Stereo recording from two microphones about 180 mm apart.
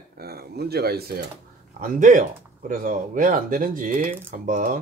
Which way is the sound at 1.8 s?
45° right (ahead or behind).